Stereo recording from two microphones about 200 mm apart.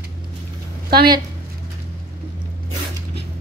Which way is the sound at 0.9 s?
50° right (ahead or behind).